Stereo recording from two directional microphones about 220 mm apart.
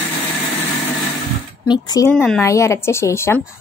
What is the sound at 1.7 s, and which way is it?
A woman's voice, 15° left (ahead or behind).